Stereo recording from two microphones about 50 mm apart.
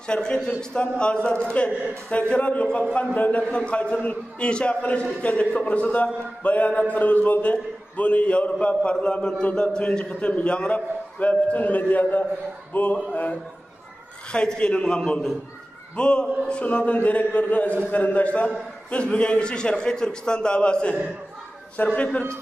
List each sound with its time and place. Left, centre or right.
0.0 s a man's voice: centre
12.7 s a sound: left
13.1 s a man's voice: left